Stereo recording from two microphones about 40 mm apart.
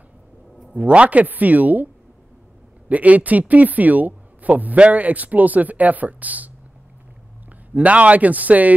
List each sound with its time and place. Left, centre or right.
0.7 s speech: right
1.2 s speech: right
2.9 s speech: right
7.7 s speech: right